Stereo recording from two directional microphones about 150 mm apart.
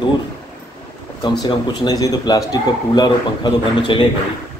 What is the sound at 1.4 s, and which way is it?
A man's voice, 25° left (ahead or behind).